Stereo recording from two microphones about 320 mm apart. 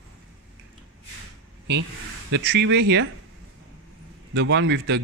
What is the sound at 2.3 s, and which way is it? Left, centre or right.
Speech, right.